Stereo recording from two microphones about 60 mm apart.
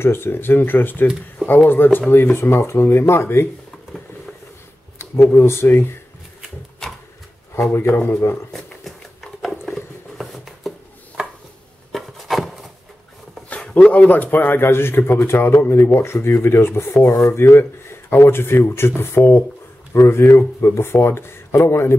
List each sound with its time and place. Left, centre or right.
0.0 s speech: left
4.9 s a sound: left
5.3 s speech: left
6.8 s a sound: centre
7.7 s speech: left
8.5 s patter: centre
11.9 s rub: centre
13.7 s speech: left